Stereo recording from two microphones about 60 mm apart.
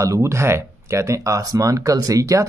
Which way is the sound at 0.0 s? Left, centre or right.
Right.